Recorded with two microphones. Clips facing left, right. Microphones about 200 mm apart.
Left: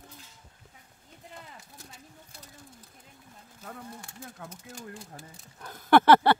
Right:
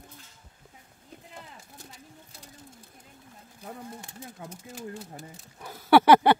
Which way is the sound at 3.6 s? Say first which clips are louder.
Right 2 dB; 20° right (ahead or behind).